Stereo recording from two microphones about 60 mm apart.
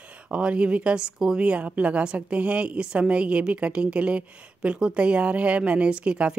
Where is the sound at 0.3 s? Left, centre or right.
Centre.